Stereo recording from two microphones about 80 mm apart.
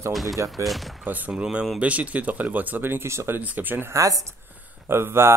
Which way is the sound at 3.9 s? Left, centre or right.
Right.